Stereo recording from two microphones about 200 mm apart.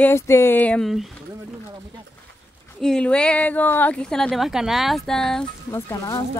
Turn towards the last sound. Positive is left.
turn(degrees=15)  # may be behind; listen again after turning